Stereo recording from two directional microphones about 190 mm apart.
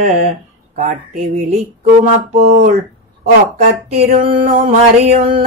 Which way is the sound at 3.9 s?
35° right (ahead or behind).